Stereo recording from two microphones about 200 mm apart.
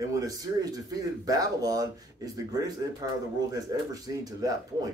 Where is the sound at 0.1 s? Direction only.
20° right (ahead or behind).